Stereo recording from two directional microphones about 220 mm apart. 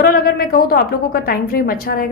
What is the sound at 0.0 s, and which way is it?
A woman's voice, 40° left (ahead or behind).